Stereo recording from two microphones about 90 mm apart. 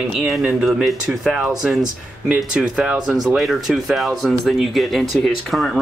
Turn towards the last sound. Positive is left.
turn(degrees=0)  # may be behind; listen again after turning